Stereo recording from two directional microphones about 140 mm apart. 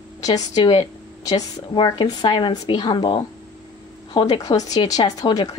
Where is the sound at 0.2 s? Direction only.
30° left (ahead or behind).